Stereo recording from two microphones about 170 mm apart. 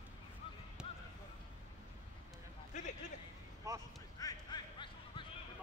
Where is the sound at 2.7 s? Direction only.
45° left (ahead or behind).